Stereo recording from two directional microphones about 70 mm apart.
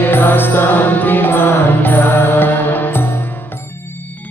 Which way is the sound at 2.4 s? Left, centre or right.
Left.